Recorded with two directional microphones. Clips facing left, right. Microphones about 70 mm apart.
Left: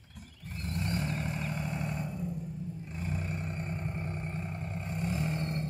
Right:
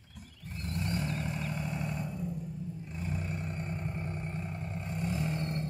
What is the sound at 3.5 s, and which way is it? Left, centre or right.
Vehicle, left.